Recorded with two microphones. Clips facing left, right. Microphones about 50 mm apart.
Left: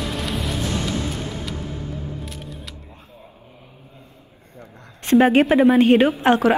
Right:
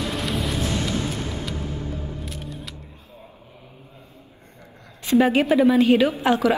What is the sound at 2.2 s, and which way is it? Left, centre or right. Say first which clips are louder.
Music: right 1 dB; centre.